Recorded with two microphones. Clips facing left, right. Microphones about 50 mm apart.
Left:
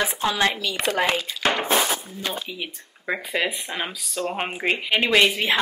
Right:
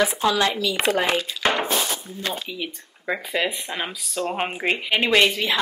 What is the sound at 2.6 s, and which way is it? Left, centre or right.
Speech, centre.